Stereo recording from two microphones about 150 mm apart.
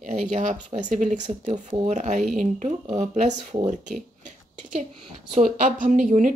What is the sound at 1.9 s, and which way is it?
Speech, 55° right (ahead or behind).